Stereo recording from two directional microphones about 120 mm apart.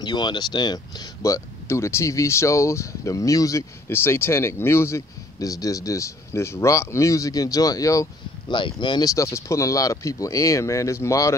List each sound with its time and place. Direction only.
0.0 s speech: 40° left (ahead or behind)
8.5 s speech: 40° left (ahead or behind); by 11.3 s 25° left (ahead or behind)